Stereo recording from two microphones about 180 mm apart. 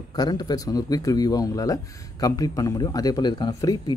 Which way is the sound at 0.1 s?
20° left (ahead or behind).